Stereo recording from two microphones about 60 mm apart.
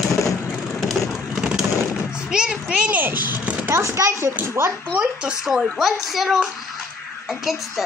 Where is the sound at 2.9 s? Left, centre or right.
Right.